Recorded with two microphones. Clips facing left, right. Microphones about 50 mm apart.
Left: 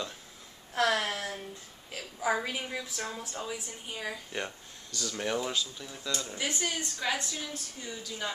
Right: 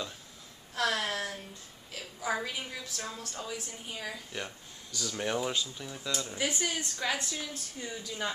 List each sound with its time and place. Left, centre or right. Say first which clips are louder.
0.7 s a sound: left 3 dB; left
2.1 s a woman's voice: left 3 dB; centre
4.9 s speech: even; centre